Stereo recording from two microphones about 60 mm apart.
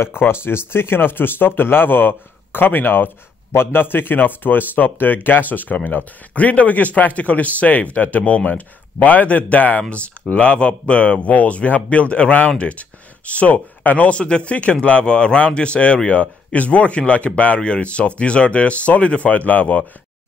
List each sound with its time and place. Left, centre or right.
0.0 s speech: left